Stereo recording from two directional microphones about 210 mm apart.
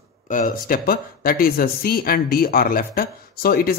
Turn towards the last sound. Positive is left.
turn(degrees=45)  # may be behind; listen again after turning